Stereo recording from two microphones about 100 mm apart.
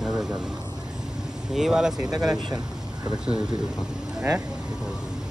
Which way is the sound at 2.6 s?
5° right (ahead or behind).